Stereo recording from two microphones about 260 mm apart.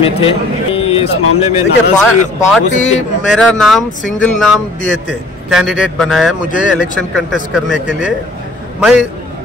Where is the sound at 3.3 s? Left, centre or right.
Centre.